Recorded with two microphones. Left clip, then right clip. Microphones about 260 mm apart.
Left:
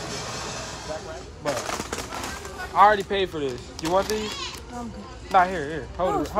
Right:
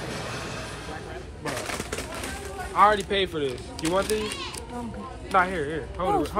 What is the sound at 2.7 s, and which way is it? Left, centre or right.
Speech, left.